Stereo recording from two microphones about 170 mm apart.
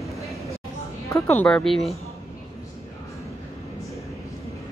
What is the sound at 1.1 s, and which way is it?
Speech, 10° left (ahead or behind).